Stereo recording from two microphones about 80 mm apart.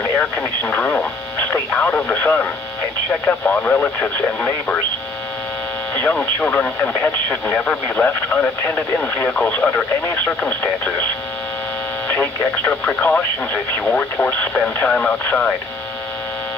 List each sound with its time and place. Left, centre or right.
0.2 s speech: left
6.5 s speech: left
12.1 s speech: left